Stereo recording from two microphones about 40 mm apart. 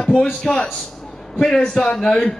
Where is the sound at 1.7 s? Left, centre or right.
Centre.